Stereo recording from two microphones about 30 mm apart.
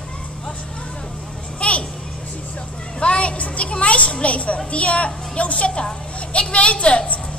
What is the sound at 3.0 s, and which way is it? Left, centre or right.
A woman's voice, left.